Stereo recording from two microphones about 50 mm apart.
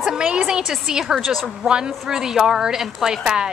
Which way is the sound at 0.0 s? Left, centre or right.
Centre.